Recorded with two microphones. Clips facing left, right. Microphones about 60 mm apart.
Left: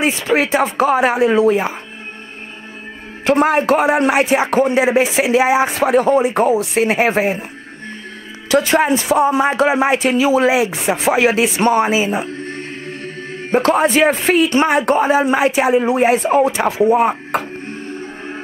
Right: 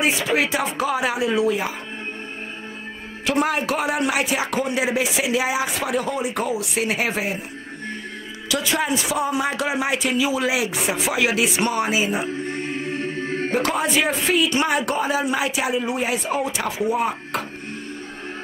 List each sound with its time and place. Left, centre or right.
0.0 s a man's voice: left
3.3 s a man's voice: left
8.5 s a man's voice: left
12.9 s music: right
13.5 s a man's voice: left